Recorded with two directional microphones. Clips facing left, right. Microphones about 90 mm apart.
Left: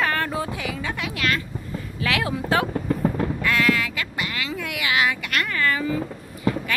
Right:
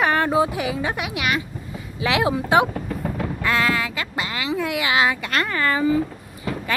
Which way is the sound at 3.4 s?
25° right (ahead or behind).